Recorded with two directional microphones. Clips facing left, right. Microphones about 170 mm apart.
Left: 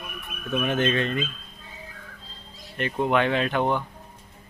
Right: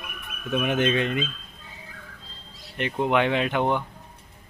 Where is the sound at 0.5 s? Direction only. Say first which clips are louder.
Right 1 dB; 15° right (ahead or behind).